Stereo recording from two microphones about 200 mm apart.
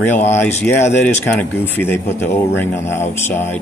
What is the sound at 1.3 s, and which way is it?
Speech, 10° left (ahead or behind).